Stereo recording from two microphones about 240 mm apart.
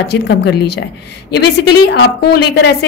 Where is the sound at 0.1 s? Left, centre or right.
Left.